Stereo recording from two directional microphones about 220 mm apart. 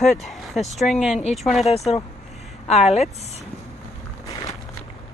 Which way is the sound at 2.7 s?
30° left (ahead or behind).